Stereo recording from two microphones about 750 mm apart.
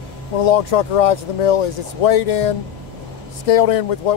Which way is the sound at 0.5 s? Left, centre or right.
Left.